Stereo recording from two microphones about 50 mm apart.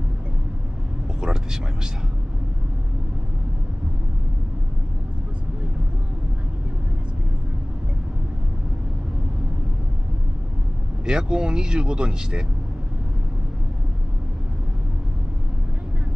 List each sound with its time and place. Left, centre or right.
1.2 s speech: centre
11.1 s speech: centre